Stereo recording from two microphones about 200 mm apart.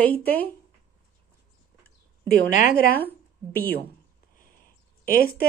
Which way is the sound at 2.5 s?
40° left (ahead or behind).